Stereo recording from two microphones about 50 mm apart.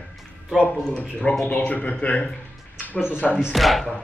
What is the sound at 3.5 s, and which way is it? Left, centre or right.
Speech, centre.